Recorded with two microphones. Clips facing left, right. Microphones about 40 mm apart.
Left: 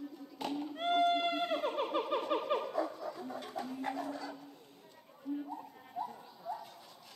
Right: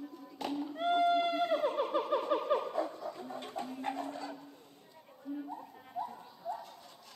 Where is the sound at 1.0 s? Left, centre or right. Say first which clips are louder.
Right 2 dB; left.